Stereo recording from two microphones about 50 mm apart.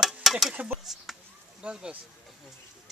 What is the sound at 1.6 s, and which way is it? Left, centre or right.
Speech, centre.